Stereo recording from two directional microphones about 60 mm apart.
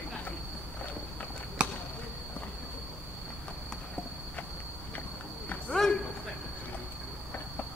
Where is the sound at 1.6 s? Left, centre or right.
Right.